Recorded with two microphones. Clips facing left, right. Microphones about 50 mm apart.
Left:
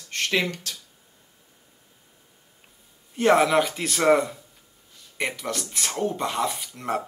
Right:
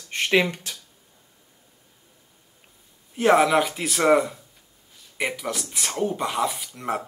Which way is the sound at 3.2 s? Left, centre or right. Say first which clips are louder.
Right 1 dB; centre.